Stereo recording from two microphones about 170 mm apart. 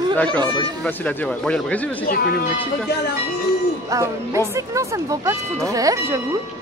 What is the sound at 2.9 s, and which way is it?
Speech, 75° left (ahead or behind).